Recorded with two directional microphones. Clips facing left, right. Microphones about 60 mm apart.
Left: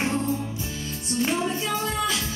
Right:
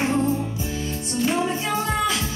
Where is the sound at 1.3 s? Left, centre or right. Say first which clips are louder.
Right 4 dB; right.